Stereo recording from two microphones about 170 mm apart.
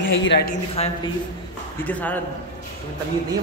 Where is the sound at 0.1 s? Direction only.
90° left.